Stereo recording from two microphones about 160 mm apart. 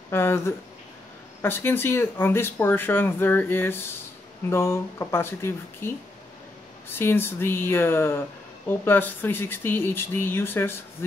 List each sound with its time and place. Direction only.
0.1 s speech: 15° left (ahead or behind)